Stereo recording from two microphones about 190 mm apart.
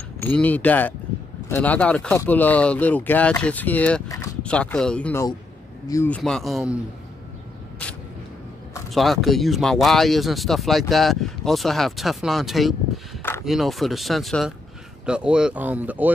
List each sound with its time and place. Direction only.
0.2 s speech: 10° left (ahead or behind)
4.1 s a sound: 20° left (ahead or behind)
4.4 s speech: 5° left (ahead or behind)
7.8 s vehicle: 5° left (ahead or behind)
8.9 s speech: centre (ahead or behind)